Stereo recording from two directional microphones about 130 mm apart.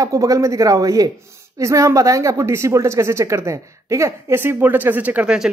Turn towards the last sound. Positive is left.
turn(degrees=-10)  # may be behind; listen again after turning